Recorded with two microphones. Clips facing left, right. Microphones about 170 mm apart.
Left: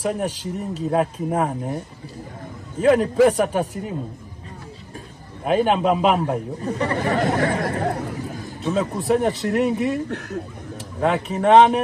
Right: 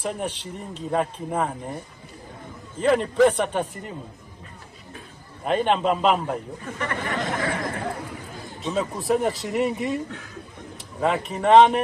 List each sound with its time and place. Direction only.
0.0 s speech: centre (ahead or behind)
2.8 s speech: 5° left (ahead or behind)
5.4 s speech: 5° left (ahead or behind)
6.6 s speech: 35° left (ahead or behind)
8.7 s speech: centre (ahead or behind)
10.0 s speech: 65° left (ahead or behind)
11.0 s speech: centre (ahead or behind)